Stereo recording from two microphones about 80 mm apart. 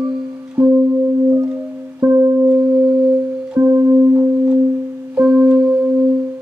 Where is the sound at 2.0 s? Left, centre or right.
Right.